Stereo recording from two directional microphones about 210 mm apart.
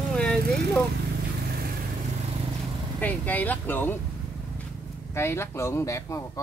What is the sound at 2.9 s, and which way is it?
Speech, 10° left (ahead or behind).